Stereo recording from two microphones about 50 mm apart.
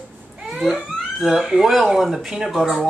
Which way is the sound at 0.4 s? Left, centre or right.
Centre.